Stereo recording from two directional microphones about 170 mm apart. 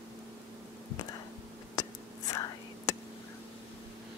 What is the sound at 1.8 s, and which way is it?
Whispering, 20° left (ahead or behind).